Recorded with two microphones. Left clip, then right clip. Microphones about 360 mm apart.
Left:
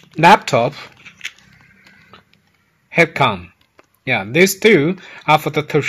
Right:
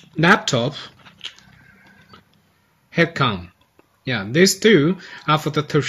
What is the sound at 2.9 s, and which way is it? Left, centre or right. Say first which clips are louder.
Speech: left 5 dB; centre.